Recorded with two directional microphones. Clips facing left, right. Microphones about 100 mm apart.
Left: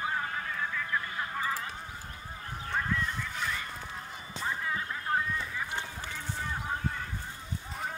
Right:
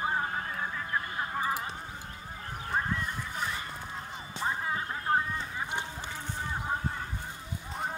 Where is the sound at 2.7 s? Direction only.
25° right (ahead or behind).